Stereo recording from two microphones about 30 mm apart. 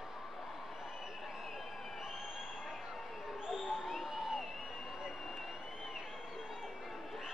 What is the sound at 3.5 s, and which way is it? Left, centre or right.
Crowd, centre.